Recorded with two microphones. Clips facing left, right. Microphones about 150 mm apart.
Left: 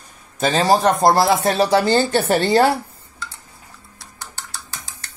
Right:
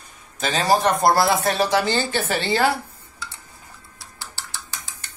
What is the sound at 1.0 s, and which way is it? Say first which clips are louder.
Speech: left 3 dB; 25° left (ahead or behind).